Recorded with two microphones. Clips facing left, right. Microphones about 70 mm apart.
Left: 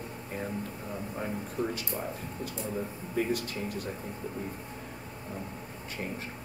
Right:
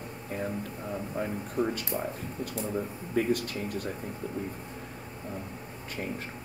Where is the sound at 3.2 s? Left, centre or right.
Right.